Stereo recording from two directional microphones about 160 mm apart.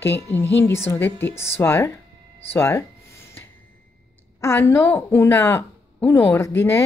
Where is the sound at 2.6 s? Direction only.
15° left (ahead or behind).